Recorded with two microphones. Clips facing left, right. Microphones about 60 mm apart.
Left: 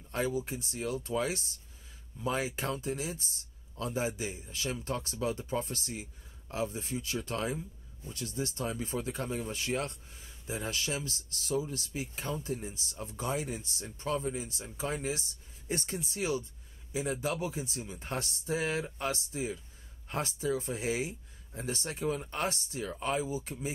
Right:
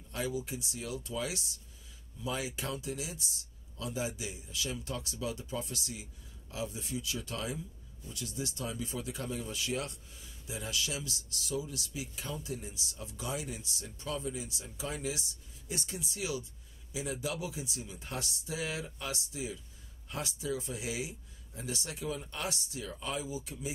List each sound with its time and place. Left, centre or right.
0.1 s speech: left